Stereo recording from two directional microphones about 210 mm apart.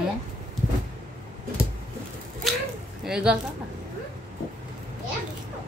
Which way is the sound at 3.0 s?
5° right (ahead or behind).